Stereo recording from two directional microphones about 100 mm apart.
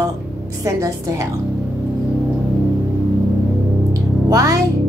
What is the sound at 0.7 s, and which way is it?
Speech, 30° right (ahead or behind).